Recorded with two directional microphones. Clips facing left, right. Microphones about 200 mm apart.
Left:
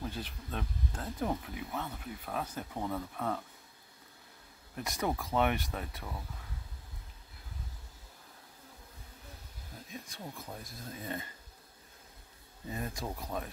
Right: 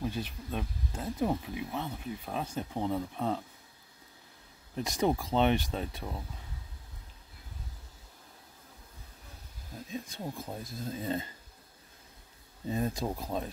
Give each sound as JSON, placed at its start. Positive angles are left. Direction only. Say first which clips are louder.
{"t": 0.0, "sound": "speech", "louder": "right 5 dB", "side_deg": -15}
{"t": 4.7, "sound": "speech", "louder": "right 5 dB", "side_deg": -25}
{"t": 10.1, "sound": "speech", "louder": "right 6 dB", "side_deg": -30}
{"t": 12.6, "sound": "speech", "louder": "right 7 dB", "side_deg": -25}